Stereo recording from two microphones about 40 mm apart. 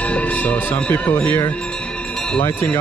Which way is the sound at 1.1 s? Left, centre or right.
Left.